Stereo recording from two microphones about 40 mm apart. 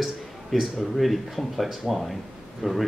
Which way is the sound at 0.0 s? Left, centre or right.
Centre.